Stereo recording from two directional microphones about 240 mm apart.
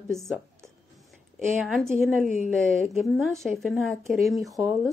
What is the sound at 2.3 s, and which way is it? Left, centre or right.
Speech, left.